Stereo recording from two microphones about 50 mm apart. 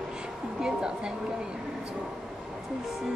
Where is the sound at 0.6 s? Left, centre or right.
Centre.